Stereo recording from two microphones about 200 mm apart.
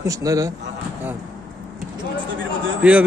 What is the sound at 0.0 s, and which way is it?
Speech, 15° right (ahead or behind).